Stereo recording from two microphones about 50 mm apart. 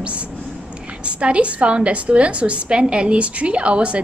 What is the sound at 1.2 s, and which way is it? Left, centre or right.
A woman's voice, right.